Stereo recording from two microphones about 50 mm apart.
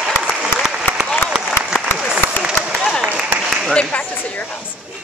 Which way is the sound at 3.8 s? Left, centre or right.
Left.